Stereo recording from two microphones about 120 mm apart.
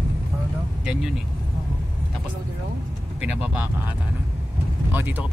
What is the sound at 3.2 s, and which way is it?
Speech, 15° right (ahead or behind).